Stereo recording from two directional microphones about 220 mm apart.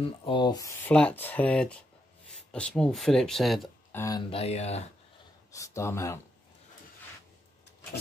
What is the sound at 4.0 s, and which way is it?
Speech, 15° left (ahead or behind).